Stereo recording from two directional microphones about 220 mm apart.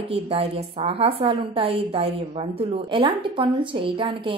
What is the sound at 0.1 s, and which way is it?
A woman's voice, 25° right (ahead or behind).